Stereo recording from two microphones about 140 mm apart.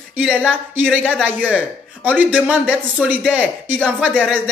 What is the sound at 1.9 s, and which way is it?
A man's voice, 10° right (ahead or behind).